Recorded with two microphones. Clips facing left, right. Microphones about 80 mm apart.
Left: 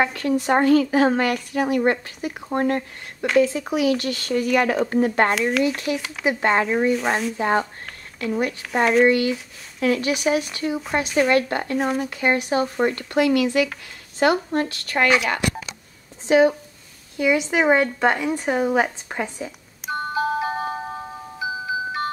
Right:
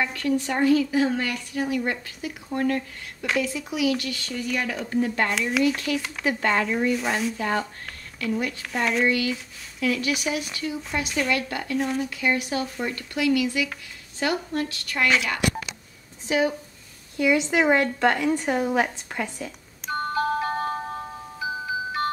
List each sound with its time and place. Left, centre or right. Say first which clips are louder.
0.0 s speech: left 4 dB; left
2.0 s speech: left 4 dB; left
5.9 s speech: even; centre
6.2 s speech: left 4 dB; left
17.2 s a sound: left 1 dB; centre